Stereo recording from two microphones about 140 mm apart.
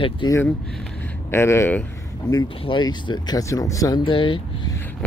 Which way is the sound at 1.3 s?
20° left (ahead or behind).